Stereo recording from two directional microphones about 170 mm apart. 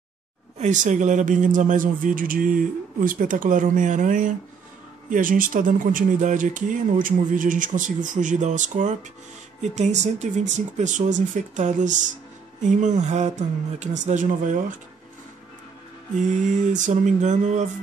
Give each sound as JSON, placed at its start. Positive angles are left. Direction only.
{"t": 0.6, "sound": "speech", "side_deg": -45}
{"t": 16.2, "sound": "speech", "side_deg": -45}